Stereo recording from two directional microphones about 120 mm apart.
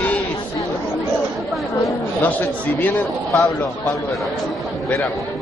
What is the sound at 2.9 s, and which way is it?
Speech, 25° left (ahead or behind).